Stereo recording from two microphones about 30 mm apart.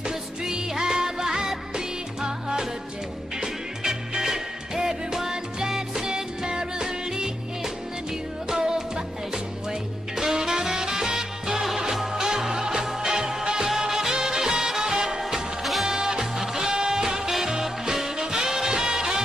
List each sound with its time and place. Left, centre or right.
0.0 s music: right
3.8 s music: centre